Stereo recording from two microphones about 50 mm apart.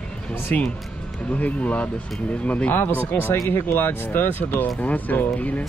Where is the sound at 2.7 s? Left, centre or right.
Left.